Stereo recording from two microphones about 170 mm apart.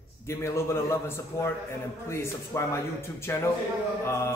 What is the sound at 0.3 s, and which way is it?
A man's voice, 15° left (ahead or behind).